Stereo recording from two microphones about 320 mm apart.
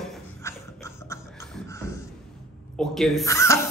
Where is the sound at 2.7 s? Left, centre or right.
Centre.